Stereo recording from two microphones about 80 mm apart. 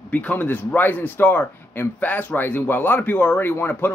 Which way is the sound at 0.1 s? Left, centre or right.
Centre.